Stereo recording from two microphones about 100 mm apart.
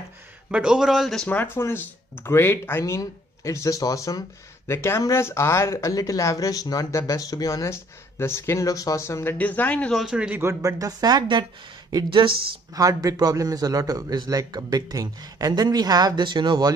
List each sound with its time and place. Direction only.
0.5 s a man's voice: 10° right (ahead or behind)
1.2 s speech: 15° left (ahead or behind)
9.9 s a man's voice: 5° right (ahead or behind)
10.4 s a man's voice: 30° right (ahead or behind); by 11.4 s 50° right (ahead or behind)
12.7 s a man's voice: 35° right (ahead or behind)